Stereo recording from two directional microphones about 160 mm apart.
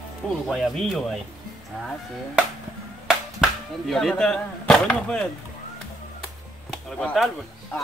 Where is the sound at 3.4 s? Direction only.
Centre (ahead or behind).